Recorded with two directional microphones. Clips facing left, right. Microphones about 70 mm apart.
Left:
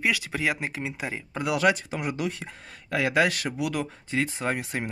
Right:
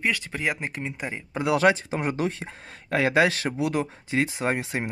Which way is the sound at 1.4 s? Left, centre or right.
Right.